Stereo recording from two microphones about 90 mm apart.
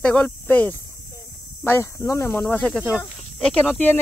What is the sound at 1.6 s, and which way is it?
Speech, 25° left (ahead or behind).